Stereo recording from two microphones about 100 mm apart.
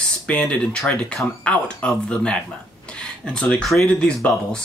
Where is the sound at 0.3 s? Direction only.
10° left (ahead or behind).